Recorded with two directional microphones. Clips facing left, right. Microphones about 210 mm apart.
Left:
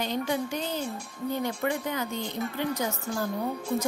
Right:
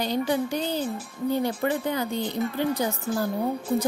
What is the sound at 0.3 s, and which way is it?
Speech, 35° right (ahead or behind).